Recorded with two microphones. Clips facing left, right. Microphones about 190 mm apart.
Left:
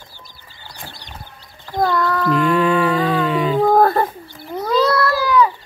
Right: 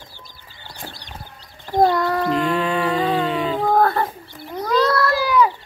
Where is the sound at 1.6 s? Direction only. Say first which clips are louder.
Right 2 dB; 20° right (ahead or behind).